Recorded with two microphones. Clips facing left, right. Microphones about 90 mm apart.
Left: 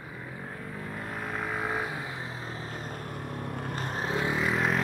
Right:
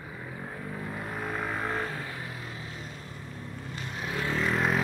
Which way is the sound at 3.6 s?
50° left (ahead or behind).